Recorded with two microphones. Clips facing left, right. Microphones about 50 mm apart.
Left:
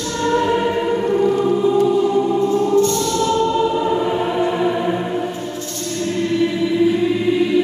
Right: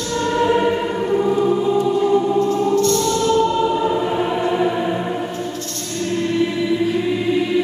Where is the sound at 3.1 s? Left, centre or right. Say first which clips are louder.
Right 1 dB; centre.